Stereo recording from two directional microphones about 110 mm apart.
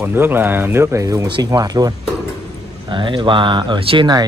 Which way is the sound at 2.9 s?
45° right (ahead or behind).